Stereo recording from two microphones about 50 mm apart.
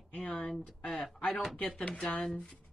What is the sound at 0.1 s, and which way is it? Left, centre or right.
Speech, left.